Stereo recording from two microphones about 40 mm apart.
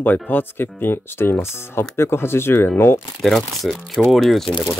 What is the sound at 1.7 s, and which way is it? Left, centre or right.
Speech, left.